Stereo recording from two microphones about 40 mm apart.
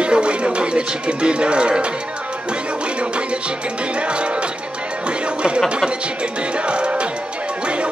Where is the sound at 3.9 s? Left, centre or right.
Right.